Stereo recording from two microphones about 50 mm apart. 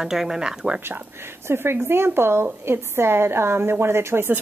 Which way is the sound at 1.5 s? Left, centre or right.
Right.